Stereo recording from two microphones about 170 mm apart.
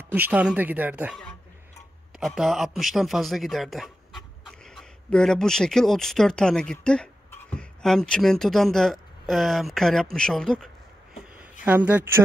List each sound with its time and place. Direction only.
0.0 s speech: 10° right (ahead or behind)
2.1 s a man's voice: centre (ahead or behind)
11.6 s speech: 10° right (ahead or behind)